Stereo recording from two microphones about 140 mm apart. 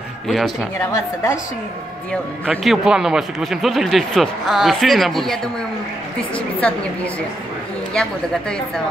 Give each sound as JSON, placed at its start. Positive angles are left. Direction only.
{"t": 0.3, "sound": "speech", "side_deg": 0}
{"t": 0.7, "sound": "a woman's voice", "side_deg": 20}
{"t": 2.5, "sound": "a woman's voice", "side_deg": 0}
{"t": 7.9, "sound": "speech", "side_deg": 5}